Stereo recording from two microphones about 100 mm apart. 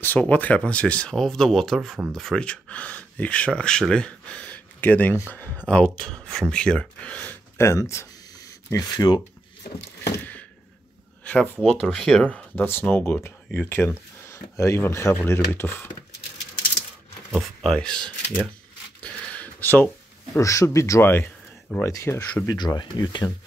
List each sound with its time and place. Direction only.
0.0 s speech: 15° left (ahead or behind)
8.9 s speech: 45° left (ahead or behind)
10.1 s a sound: 15° left (ahead or behind)
11.2 s speech: 15° left (ahead or behind)
17.3 s speech: centre (ahead or behind)
19.0 s a sound: 10° left (ahead or behind)
20.3 s speech: 30° left (ahead or behind)
22.5 s speech: 40° left (ahead or behind)